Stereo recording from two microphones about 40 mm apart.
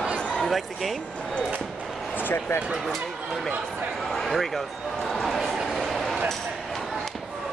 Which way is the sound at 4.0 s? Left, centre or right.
Centre.